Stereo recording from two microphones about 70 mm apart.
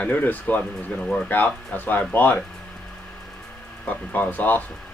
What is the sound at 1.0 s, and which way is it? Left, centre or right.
Speech, centre.